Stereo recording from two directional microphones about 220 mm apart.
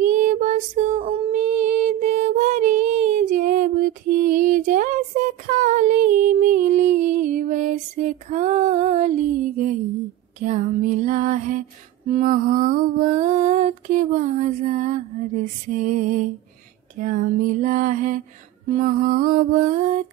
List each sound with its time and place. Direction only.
0.0 s female singing: 35° right (ahead or behind)
10.4 s music: 35° right (ahead or behind)
12.1 s mantra: 35° right (ahead or behind)
17.0 s music: 35° right (ahead or behind)
18.9 s mantra: 40° right (ahead or behind)